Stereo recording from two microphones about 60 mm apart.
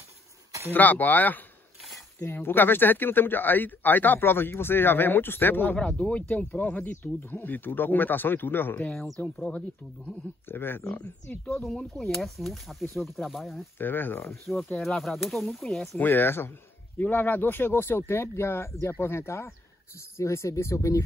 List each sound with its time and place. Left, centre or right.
0.7 s speech: left
5.8 s speech: centre
10.5 s speech: left
11.5 s speech: centre
13.7 s speech: left
14.4 s speech: centre
16.0 s speech: left